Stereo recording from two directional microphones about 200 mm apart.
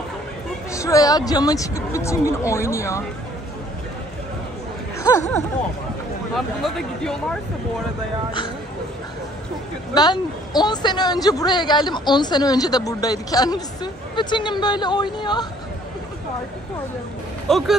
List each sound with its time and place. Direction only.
0.7 s speech: 15° left (ahead or behind)
6.3 s speech: centre (ahead or behind)
9.9 s a woman's voice: 20° left (ahead or behind)
17.5 s speech: centre (ahead or behind)